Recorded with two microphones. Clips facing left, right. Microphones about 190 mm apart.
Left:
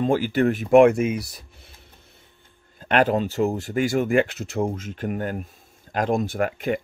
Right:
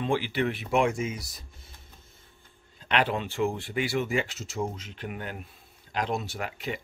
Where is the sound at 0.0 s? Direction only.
45° left (ahead or behind); by 1.7 s 60° left (ahead or behind).